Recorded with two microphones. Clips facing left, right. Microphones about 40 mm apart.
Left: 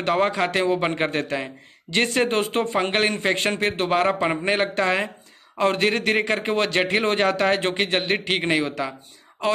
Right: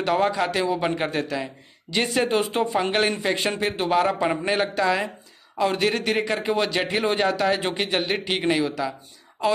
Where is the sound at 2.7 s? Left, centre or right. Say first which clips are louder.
Left 1 dB; left.